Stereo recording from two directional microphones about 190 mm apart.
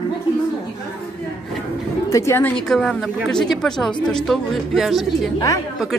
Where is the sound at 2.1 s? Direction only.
15° left (ahead or behind).